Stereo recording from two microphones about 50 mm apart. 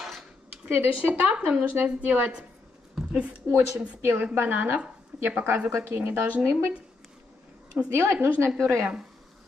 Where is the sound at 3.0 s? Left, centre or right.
Centre.